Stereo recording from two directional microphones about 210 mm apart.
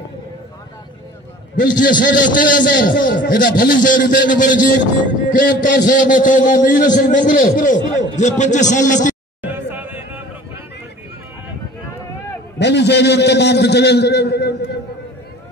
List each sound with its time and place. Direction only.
1.8 s a man's voice: 40° left (ahead or behind)
9.4 s music: 10° right (ahead or behind)
12.5 s a man's voice: 55° left (ahead or behind)